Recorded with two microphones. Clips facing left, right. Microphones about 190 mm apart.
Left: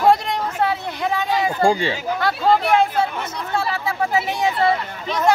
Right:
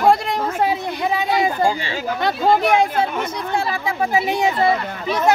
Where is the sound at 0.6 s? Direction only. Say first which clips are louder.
Right 1 dB; 15° right (ahead or behind).